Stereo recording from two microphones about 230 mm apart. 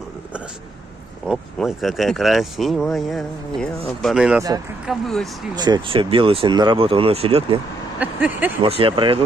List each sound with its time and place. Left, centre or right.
1.2 s speech: centre
5.6 s speech: centre
8.0 s a sound: centre
8.6 s speech: right